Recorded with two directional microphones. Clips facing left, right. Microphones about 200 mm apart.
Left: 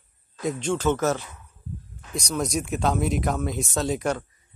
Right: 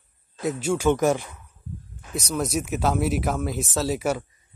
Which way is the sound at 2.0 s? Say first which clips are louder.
Right 1 dB; 5° right (ahead or behind).